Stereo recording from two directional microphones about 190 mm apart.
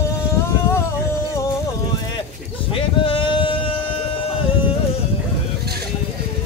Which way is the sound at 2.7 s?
25° left (ahead or behind).